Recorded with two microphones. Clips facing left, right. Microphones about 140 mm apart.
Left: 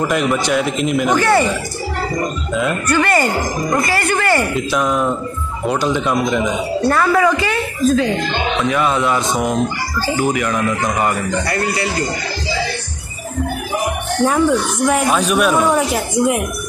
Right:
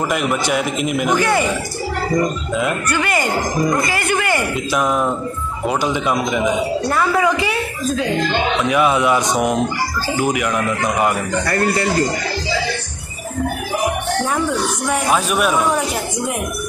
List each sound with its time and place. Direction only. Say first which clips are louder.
0.1 s a man's voice: left 2 dB; 5° right (ahead or behind)
2.6 s a woman's voice: left 4 dB; 10° right (ahead or behind)
4.1 s a sound: left 2 dB; 15° right (ahead or behind)
4.6 s a man's voice: left 1 dB; 5° right (ahead or behind)
14.9 s a man's voice: left 3 dB; 5° right (ahead or behind)